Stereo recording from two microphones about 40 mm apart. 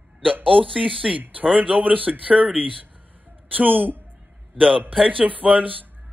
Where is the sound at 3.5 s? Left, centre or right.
Right.